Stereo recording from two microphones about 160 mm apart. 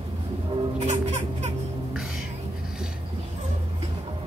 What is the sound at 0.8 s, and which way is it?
Music, 45° right (ahead or behind).